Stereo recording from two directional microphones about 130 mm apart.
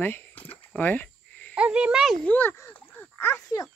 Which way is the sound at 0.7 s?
10° left (ahead or behind).